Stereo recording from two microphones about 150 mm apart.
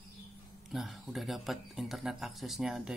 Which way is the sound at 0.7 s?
Centre (ahead or behind).